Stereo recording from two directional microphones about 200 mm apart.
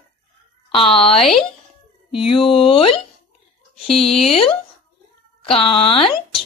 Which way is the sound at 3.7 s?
Centre (ahead or behind).